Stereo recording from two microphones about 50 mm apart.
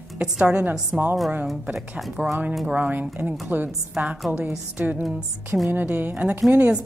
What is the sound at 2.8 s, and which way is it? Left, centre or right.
A woman's voice, right.